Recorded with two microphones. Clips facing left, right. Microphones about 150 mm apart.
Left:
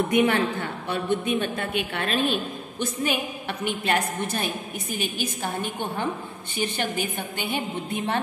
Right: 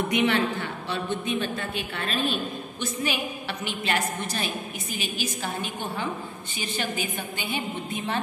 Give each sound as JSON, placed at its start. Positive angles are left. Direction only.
{"t": 0.2, "sound": "a woman's voice", "side_deg": 45}